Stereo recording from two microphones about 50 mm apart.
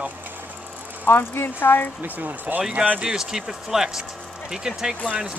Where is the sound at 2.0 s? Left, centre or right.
Right.